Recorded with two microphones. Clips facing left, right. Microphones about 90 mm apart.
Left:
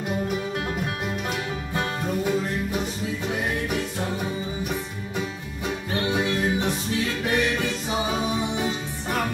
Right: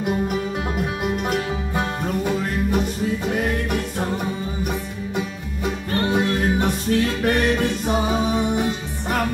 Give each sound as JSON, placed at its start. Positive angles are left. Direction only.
{"t": 5.9, "sound": "music", "side_deg": -55}